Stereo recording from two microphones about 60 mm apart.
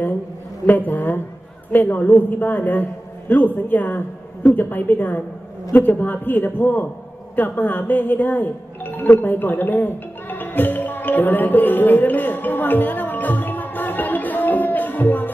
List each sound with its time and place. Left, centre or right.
0.7 s a woman's voice: left
7.3 s music: left